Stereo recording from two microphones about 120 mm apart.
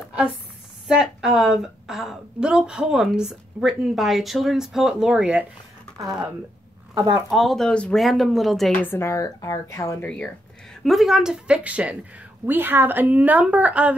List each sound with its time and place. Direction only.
0.8 s a woman's voice: 5° right (ahead or behind)
5.9 s speech: 30° right (ahead or behind)
7.2 s a woman's voice: centre (ahead or behind)
8.8 s speech: 25° left (ahead or behind)
10.0 s speech: 10° left (ahead or behind)
10.8 s speech: centre (ahead or behind)